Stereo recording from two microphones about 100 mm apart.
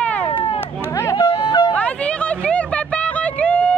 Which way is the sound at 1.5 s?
45° left (ahead or behind).